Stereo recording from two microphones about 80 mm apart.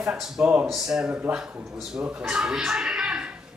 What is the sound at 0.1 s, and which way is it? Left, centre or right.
Speech, centre.